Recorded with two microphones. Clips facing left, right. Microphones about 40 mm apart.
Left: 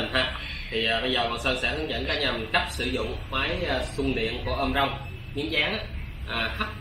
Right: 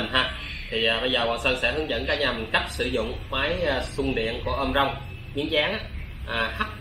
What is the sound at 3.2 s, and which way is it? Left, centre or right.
A man's voice, right.